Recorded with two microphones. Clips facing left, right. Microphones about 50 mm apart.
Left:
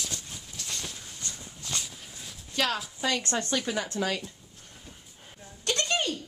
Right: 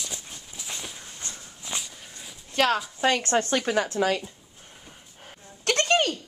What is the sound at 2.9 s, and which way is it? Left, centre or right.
Speech, right.